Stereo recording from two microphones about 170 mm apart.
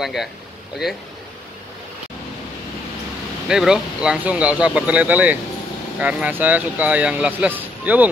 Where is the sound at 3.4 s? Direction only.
5° right (ahead or behind).